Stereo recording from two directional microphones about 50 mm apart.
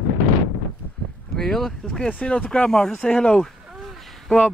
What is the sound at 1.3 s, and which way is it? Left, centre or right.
Speech, centre.